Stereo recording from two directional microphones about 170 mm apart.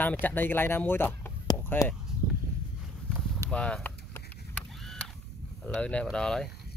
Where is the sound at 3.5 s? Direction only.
5° left (ahead or behind).